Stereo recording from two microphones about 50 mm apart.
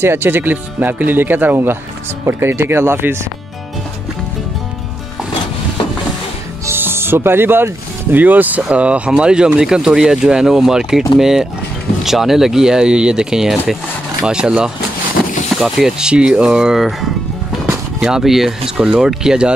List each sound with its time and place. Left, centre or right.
0.0 s speech: right
2.2 s speech: right
6.7 s speech: right; by 14.7 s centre
15.5 s speech: centre
16.1 s speech: centre